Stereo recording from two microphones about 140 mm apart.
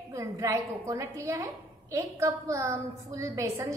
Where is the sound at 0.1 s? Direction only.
20° right (ahead or behind).